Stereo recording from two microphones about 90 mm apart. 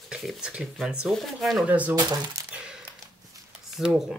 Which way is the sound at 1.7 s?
20° right (ahead or behind).